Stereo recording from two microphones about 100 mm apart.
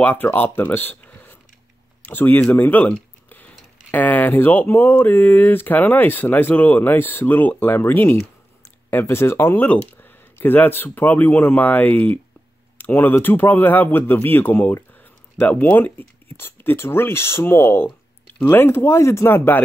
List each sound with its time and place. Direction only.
0.0 s speech: 20° left (ahead or behind)